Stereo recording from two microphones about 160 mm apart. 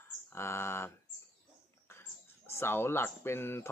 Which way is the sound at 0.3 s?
15° left (ahead or behind).